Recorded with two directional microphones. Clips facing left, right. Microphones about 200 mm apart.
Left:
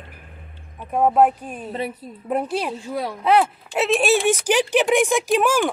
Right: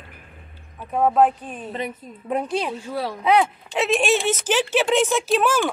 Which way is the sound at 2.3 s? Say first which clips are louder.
Left 1 dB; 5° left (ahead or behind).